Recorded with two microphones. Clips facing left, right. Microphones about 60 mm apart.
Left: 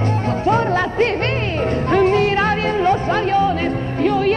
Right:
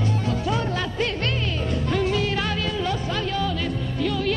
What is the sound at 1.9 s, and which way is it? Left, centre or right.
Music, left.